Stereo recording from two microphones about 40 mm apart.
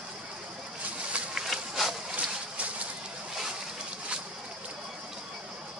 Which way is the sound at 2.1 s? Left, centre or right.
Right.